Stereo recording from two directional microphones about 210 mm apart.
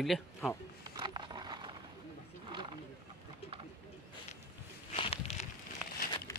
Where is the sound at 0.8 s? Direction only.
20° right (ahead or behind).